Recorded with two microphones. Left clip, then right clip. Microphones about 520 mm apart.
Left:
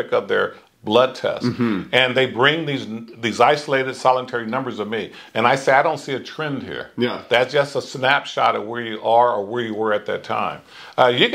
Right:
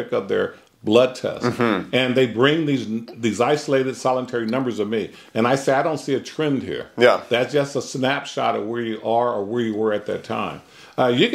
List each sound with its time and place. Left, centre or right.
0.1 s speech: left
1.4 s speech: right
1.9 s speech: left